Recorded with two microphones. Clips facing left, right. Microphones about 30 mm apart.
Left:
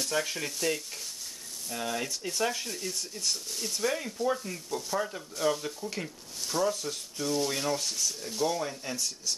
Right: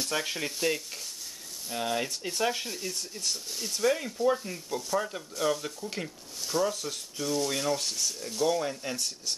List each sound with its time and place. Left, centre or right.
0.1 s speech: centre
8.5 s speech: centre